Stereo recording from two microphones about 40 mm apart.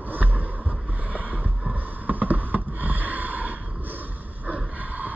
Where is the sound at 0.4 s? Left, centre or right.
Right.